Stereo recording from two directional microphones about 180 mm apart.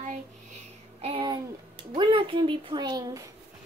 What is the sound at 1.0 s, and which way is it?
A woman's voice, 30° right (ahead or behind).